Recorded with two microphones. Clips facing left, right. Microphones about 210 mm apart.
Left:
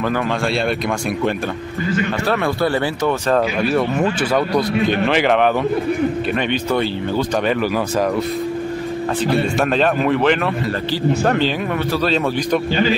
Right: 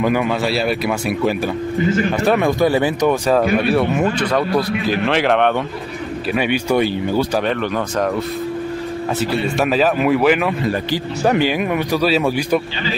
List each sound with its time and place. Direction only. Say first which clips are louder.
0.8 s speech: right 1 dB; 5° right (ahead or behind)
1.9 s speech: right 2 dB; 20° right (ahead or behind); by 5.5 s centre (ahead or behind)
6.3 s speech: right 2 dB; 10° right (ahead or behind)
9.2 s speech: left 1 dB; 5° right (ahead or behind)